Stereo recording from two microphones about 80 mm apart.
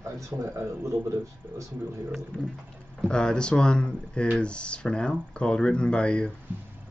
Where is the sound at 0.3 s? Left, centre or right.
Right.